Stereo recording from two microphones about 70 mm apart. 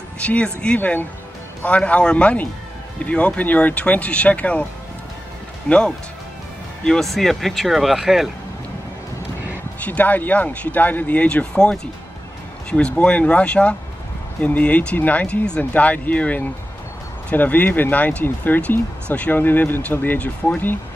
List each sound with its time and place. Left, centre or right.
0.2 s speech: centre
5.7 s speech: centre
9.8 s speech: left
11.5 s speech: centre